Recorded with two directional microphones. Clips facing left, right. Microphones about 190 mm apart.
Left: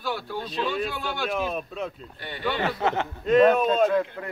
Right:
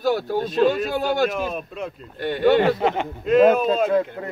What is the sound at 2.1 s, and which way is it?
Speech, 50° right (ahead or behind).